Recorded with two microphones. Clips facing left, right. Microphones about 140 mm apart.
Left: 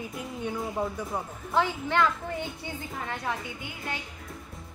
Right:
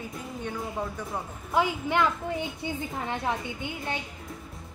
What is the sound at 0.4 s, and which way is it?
Speech, 10° left (ahead or behind).